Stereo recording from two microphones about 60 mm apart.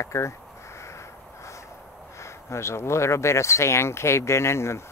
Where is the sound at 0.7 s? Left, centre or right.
Left.